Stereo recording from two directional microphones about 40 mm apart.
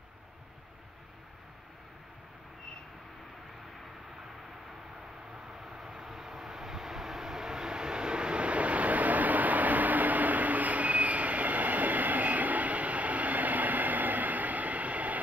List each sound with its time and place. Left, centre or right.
5.7 s vehicle: centre; by 15.1 s right